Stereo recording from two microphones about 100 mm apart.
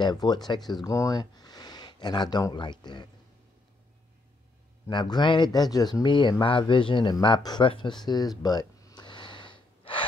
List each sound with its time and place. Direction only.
0.0 s speech: 45° left (ahead or behind)
0.8 s speech: 35° left (ahead or behind)
4.8 s speech: 45° left (ahead or behind)